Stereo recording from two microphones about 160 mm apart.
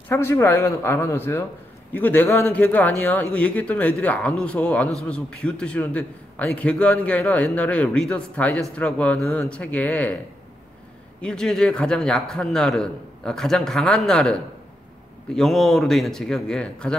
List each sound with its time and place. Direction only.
0.1 s a man's voice: 15° left (ahead or behind)
11.1 s a man's voice: 5° left (ahead or behind)
15.3 s a man's voice: centre (ahead or behind)